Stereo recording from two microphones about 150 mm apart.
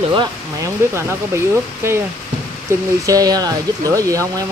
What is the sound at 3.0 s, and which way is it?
Speech, 25° right (ahead or behind).